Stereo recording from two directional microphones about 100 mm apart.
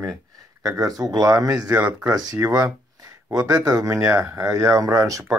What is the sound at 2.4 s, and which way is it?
Speech, 25° right (ahead or behind).